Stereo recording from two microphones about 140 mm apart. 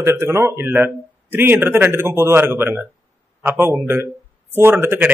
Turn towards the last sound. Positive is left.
turn(degrees=-15)  # may be behind; listen again after turning